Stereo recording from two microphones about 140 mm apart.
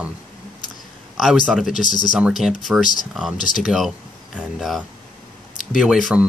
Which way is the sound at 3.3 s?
70° left (ahead or behind).